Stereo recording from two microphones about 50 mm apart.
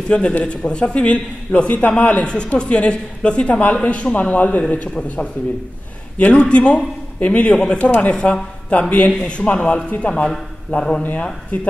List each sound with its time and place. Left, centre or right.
0.1 s a man's voice: left
7.5 s a man's voice: centre
9.1 s a man's voice: centre
9.4 s a man's voice: left